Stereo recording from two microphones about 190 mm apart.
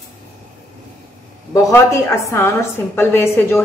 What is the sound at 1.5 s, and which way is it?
A woman's voice, 15° left (ahead or behind).